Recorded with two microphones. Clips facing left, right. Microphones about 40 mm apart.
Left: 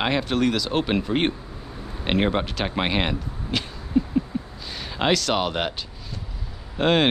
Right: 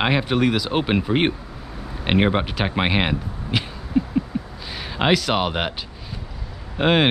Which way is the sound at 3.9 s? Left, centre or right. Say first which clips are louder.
Right 1 dB; centre.